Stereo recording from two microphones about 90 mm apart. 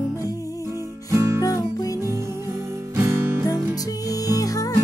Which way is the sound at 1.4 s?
45° left (ahead or behind).